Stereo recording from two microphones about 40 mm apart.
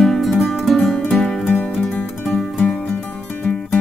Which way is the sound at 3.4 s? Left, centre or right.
Left.